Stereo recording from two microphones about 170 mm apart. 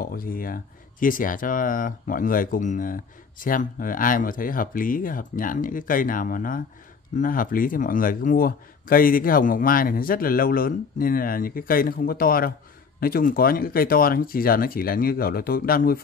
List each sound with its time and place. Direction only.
0.0 s speech: 60° left (ahead or behind)